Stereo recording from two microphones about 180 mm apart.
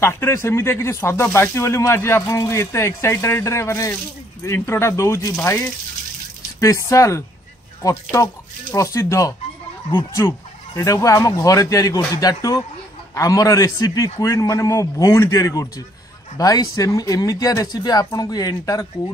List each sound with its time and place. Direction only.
0.0 s speech: 15° left (ahead or behind)